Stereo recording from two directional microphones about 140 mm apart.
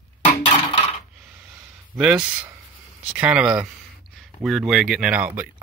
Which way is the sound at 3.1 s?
10° right (ahead or behind).